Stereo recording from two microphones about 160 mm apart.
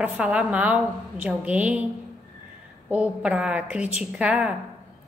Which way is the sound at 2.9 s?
10° right (ahead or behind).